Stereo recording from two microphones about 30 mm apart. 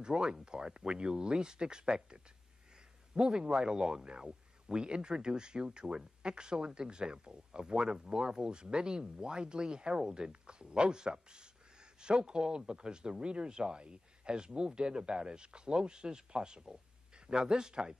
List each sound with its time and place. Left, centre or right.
0.0 s speech: right
3.2 s speech: right